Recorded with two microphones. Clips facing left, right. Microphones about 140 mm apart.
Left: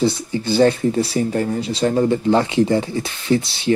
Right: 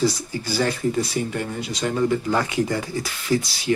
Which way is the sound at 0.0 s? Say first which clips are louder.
Left 4 dB; 25° left (ahead or behind).